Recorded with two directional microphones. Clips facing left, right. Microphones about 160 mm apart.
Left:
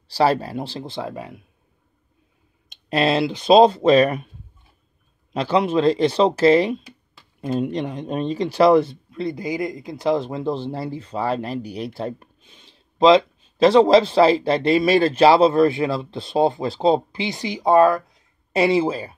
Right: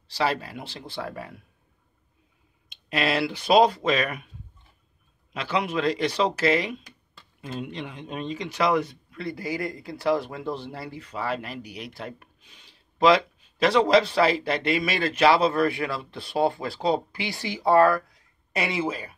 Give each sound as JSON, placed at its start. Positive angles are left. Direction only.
{"t": 0.1, "sound": "speech", "side_deg": 35}
{"t": 2.7, "sound": "speech", "side_deg": 30}
{"t": 5.3, "sound": "speech", "side_deg": 35}